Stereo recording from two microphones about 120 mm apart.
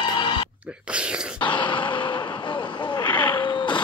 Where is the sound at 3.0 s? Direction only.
15° left (ahead or behind).